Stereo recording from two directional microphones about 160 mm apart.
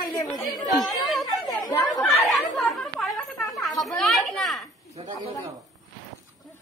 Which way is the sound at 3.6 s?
Centre (ahead or behind).